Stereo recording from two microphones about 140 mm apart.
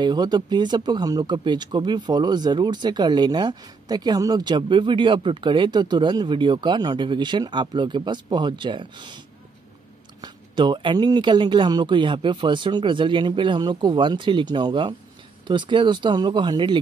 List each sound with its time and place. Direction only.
0.0 s speech: 30° right (ahead or behind)
10.2 s speech: 35° right (ahead or behind)